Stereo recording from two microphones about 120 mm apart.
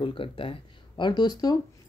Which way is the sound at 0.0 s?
45° left (ahead or behind).